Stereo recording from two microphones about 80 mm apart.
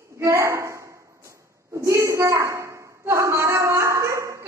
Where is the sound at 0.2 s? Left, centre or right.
Right.